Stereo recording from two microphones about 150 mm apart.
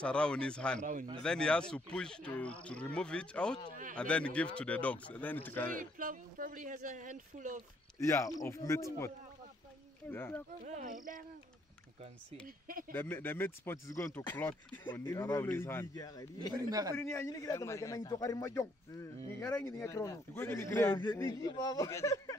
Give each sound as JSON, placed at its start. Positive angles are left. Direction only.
{"t": 0.0, "sound": "speech", "side_deg": 5}
{"t": 0.7, "sound": "speech", "side_deg": -55}
{"t": 1.2, "sound": "speech", "side_deg": 5}
{"t": 5.7, "sound": "speech", "side_deg": -65}
{"t": 8.1, "sound": "a man's voice", "side_deg": 20}
{"t": 10.1, "sound": "speech", "side_deg": 15}
{"t": 10.7, "sound": "speech", "side_deg": -60}
{"t": 12.4, "sound": "speech", "side_deg": -70}
{"t": 12.9, "sound": "speech", "side_deg": 15}
{"t": 14.4, "sound": "speech", "side_deg": 10}
{"t": 16.6, "sound": "a man's voice", "side_deg": -25}
{"t": 16.9, "sound": "a man's voice", "side_deg": 15}
{"t": 21.3, "sound": "a man's voice", "side_deg": 25}